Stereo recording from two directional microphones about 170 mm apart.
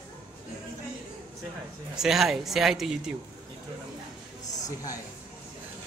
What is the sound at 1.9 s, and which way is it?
Speech, centre (ahead or behind).